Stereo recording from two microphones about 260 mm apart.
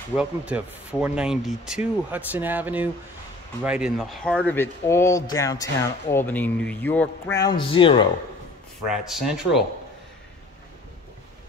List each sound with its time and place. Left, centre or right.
0.1 s speech: centre
8.8 s speech: centre